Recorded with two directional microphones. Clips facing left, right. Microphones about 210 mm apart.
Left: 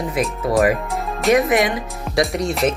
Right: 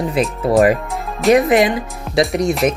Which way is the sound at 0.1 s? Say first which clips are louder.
Right 4 dB; 30° right (ahead or behind).